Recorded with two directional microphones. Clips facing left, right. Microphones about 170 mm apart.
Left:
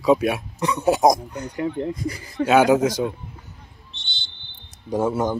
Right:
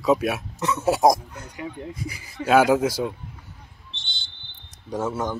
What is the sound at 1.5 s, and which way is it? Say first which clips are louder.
Speech: left 9 dB; 60° left (ahead or behind).